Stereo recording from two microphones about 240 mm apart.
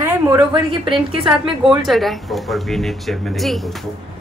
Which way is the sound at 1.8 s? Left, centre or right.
Centre.